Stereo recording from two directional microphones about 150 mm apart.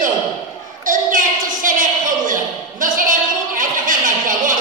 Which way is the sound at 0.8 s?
60° right (ahead or behind).